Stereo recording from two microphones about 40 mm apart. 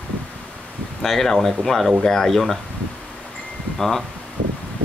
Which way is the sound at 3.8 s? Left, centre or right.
Centre.